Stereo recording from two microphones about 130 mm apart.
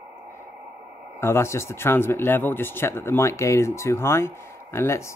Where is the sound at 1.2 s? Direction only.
20° left (ahead or behind).